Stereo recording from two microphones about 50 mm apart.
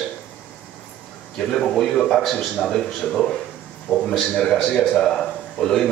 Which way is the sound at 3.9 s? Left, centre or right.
Right.